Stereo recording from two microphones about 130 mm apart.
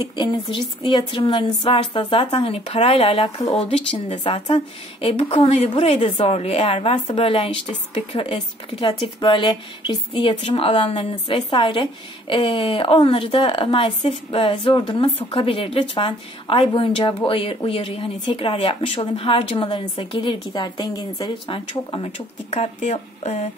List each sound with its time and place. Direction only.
0.0 s a woman's voice: 35° left (ahead or behind)
5.5 s a woman's voice: 55° left (ahead or behind)